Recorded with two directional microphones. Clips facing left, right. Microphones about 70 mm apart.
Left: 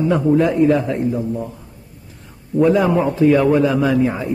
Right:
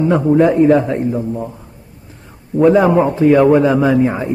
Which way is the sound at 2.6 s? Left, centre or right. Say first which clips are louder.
Right 4 dB; right.